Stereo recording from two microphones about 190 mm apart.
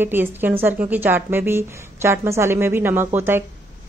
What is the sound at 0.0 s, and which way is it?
Speech, 10° right (ahead or behind).